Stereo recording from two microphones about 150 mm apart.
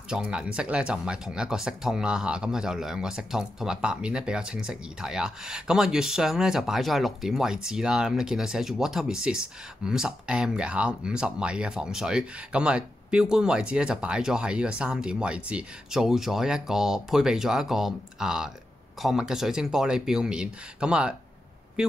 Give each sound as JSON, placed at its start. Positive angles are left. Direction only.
{"t": 0.1, "sound": "speech", "side_deg": -5}